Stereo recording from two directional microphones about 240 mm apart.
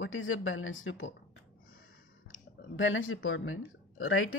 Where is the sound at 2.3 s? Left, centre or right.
Left.